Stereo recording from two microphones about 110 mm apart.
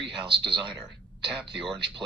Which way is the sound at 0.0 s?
45° right (ahead or behind).